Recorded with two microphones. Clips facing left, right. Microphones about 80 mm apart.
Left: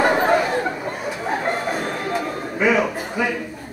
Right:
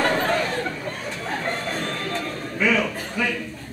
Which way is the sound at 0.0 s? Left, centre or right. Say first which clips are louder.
Left 5 dB; centre.